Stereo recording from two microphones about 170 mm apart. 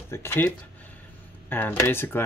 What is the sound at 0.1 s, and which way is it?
Speech, 15° left (ahead or behind).